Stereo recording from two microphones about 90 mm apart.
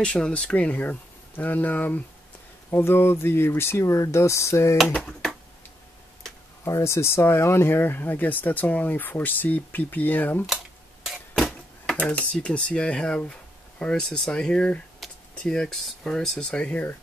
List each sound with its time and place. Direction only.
0.0 s speech: 10° left (ahead or behind); by 4.7 s 30° left (ahead or behind)
6.6 s speech: 35° left (ahead or behind)
11.1 s a sound: centre (ahead or behind)
12.0 s speech: 15° left (ahead or behind)